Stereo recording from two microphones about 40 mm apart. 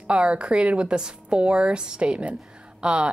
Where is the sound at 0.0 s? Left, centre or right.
Right.